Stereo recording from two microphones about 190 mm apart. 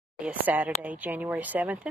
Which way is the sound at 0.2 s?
10° right (ahead or behind).